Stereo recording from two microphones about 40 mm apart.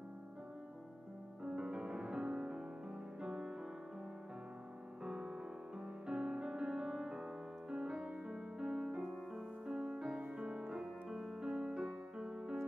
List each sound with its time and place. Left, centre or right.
1.4 s music: centre
5.0 s music: centre
10.7 s music: centre